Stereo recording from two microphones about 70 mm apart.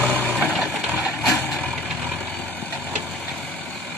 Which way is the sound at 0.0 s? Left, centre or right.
Right.